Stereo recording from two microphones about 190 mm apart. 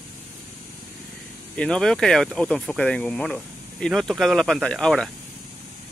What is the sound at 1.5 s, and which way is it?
Speech, 5° left (ahead or behind).